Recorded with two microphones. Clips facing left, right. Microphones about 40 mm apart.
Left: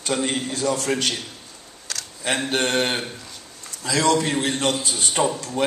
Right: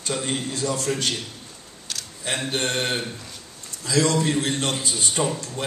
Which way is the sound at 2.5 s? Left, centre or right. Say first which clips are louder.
Left 3 dB; left.